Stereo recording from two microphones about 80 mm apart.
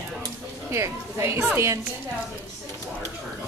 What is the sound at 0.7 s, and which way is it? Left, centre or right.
Speech, right.